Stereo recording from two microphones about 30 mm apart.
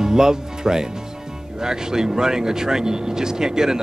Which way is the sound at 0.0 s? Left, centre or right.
Right.